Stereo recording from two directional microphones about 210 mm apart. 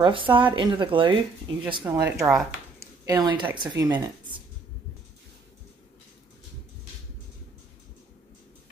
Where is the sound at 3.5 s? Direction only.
20° right (ahead or behind).